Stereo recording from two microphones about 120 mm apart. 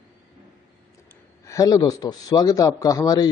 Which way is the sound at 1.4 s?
25° left (ahead or behind).